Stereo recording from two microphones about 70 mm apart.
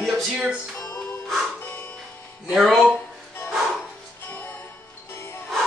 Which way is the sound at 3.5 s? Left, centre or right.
Centre.